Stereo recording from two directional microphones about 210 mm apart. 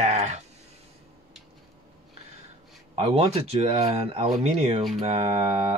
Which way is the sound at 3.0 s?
30° right (ahead or behind).